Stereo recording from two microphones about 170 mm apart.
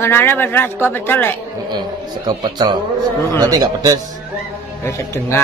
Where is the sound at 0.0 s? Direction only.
15° left (ahead or behind).